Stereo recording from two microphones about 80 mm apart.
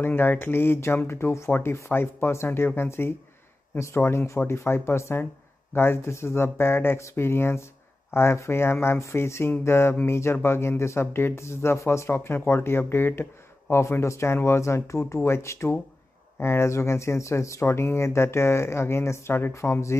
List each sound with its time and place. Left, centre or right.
0.0 s speech: left